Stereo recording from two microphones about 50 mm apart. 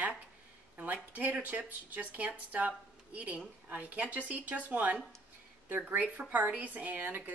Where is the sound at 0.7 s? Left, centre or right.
Right.